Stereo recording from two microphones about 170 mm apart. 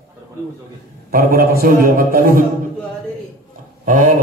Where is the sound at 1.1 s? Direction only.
60° right (ahead or behind).